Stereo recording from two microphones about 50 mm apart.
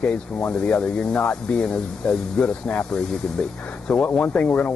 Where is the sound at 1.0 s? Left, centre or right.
Centre.